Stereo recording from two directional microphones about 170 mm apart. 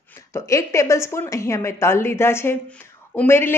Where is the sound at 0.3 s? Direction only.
20° left (ahead or behind).